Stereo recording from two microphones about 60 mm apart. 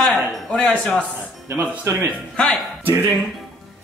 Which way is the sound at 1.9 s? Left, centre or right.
Right.